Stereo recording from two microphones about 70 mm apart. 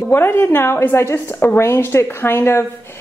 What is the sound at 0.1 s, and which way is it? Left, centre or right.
A woman's voice, left.